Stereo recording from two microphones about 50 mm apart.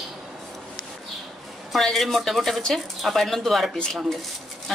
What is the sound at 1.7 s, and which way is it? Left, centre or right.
A woman's voice, centre.